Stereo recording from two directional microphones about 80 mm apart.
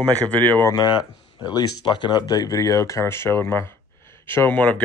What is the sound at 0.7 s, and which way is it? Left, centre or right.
Speech, left.